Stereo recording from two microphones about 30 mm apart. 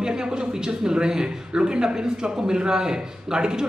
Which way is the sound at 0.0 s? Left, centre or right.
Right.